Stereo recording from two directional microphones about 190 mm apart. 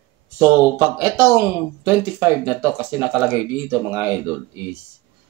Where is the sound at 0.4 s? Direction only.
10° right (ahead or behind).